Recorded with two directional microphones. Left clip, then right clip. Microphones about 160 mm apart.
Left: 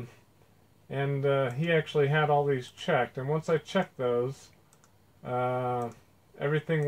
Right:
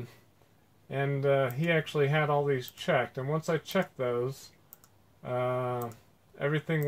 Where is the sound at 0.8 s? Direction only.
30° right (ahead or behind).